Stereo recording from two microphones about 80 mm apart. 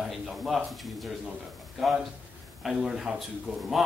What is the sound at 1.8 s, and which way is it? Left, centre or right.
Speech, centre.